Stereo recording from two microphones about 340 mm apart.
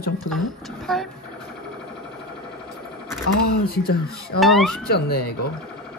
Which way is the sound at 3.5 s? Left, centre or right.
Left.